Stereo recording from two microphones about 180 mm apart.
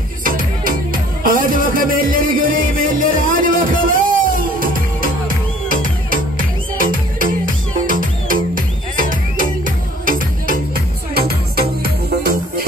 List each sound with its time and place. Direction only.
0.2 s music: 50° right (ahead or behind)